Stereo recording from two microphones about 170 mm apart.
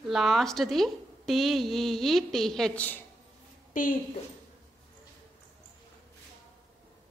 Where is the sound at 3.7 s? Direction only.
50° left (ahead or behind).